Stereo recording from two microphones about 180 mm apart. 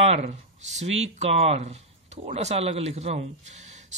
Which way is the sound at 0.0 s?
35° right (ahead or behind).